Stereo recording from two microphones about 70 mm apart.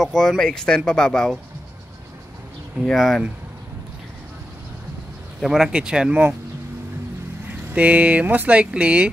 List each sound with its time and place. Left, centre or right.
0.0 s speech: centre
2.8 s speech: centre
5.4 s speech: centre
5.7 s speech: centre
7.7 s speech: right